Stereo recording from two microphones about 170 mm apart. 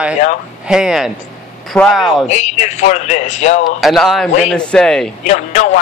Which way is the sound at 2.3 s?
45° left (ahead or behind).